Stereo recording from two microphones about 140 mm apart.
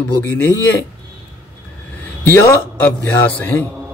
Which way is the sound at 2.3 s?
15° left (ahead or behind).